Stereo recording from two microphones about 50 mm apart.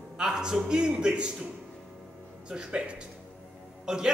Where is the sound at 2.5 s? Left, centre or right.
Centre.